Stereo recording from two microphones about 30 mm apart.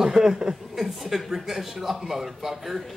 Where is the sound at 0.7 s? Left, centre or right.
Centre.